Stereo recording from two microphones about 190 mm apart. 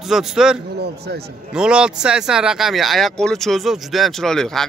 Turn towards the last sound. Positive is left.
turn(degrees=5)  # may be behind; listen again after turning